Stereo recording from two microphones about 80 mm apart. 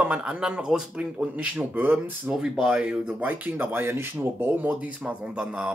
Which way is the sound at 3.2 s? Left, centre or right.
Right.